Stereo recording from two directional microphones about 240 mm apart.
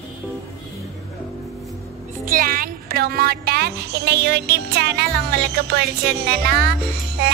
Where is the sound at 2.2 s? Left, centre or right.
Right.